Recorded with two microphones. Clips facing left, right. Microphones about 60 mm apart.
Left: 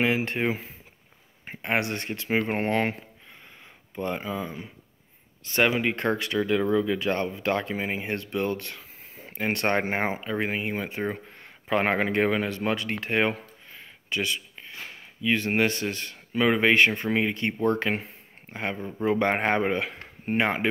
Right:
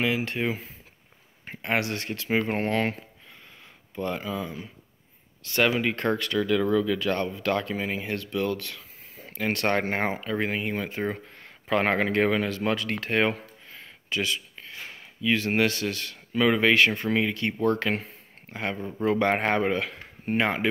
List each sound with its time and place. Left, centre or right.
0.0 s speech: left; by 20.6 s centre